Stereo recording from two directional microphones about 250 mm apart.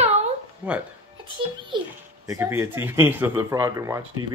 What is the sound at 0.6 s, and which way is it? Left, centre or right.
Speech, centre.